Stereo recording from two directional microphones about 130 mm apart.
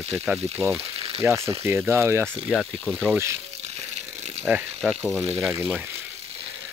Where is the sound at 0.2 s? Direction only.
15° right (ahead or behind).